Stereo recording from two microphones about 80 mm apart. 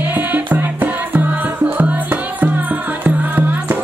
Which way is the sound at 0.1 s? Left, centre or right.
Right.